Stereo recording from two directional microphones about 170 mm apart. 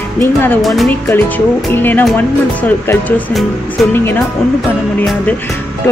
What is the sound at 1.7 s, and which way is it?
Speech, 10° left (ahead or behind).